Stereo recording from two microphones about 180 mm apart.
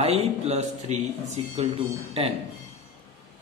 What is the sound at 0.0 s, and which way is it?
Speech, 35° right (ahead or behind).